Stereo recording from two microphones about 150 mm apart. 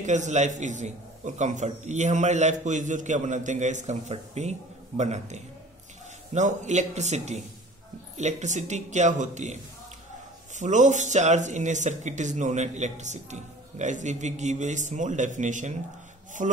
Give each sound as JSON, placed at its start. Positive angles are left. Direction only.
{"t": 0.0, "sound": "a man's voice", "side_deg": -50}